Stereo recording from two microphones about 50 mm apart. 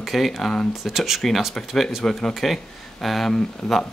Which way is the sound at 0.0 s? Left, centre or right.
Centre.